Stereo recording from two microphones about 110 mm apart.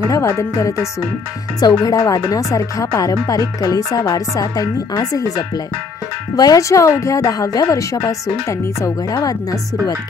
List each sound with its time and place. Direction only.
0.1 s speech: 30° left (ahead or behind)